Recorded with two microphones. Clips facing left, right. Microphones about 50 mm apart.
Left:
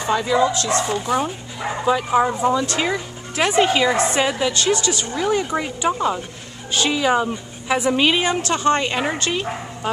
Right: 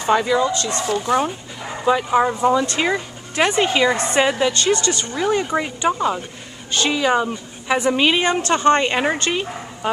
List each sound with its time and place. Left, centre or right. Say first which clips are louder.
0.1 s a woman's voice: right 3 dB; centre
0.4 s a woman's voice: left 2 dB; centre